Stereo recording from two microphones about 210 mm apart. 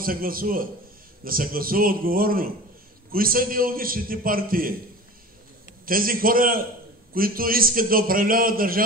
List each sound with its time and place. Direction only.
0.0 s a man's voice: 45° right (ahead or behind)
5.9 s a man's voice: 45° right (ahead or behind)